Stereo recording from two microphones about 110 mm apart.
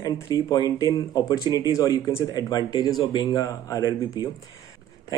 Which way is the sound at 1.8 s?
45° left (ahead or behind).